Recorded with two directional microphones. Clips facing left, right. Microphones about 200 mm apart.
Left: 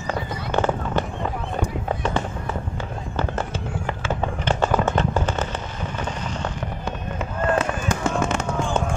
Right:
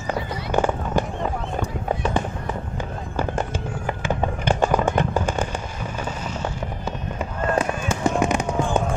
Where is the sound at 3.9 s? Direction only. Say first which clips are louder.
Right 2 dB; 15° right (ahead or behind).